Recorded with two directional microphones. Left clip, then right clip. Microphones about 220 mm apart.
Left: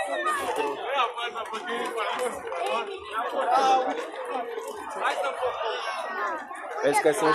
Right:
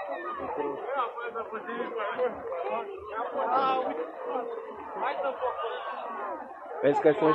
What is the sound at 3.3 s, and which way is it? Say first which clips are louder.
Speech: left 5 dB; 55° left (ahead or behind).